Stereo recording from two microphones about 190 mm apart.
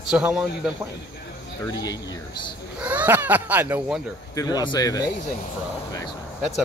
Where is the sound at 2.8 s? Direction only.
10° right (ahead or behind).